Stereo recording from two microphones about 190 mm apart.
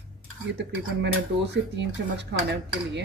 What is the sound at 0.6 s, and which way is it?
Speech, 65° right (ahead or behind).